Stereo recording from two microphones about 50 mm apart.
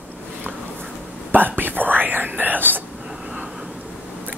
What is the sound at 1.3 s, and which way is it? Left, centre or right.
Whispering, right.